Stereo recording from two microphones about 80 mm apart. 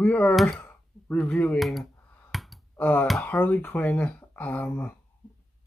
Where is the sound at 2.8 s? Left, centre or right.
Left.